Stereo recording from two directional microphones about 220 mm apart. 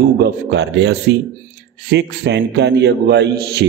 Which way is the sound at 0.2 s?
50° right (ahead or behind).